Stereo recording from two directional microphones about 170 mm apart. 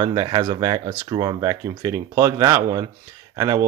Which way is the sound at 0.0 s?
20° right (ahead or behind).